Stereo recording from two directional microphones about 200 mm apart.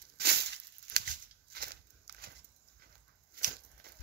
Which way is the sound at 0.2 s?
55° right (ahead or behind).